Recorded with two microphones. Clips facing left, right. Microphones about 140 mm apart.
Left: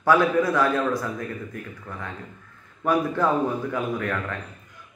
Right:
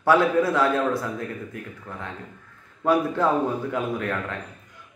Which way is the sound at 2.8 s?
25° right (ahead or behind).